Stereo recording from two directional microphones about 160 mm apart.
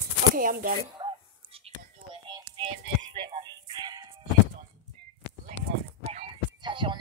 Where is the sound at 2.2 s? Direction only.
25° right (ahead or behind).